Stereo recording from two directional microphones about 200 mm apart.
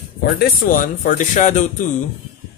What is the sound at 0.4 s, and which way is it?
Speech, 50° left (ahead or behind).